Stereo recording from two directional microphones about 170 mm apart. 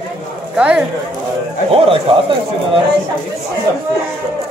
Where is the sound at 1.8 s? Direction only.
30° right (ahead or behind).